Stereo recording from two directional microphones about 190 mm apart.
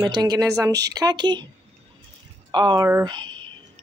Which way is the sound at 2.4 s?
25° right (ahead or behind).